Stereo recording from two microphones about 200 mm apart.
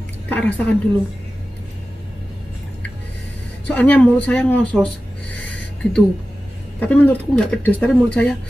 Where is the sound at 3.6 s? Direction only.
10° left (ahead or behind).